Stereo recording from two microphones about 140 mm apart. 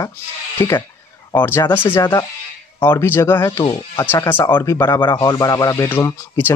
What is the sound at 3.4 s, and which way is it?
Speech, 30° left (ahead or behind).